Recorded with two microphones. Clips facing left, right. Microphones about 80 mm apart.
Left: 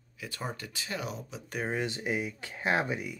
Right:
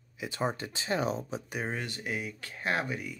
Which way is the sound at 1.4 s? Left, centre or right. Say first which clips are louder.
Left 1 dB; centre.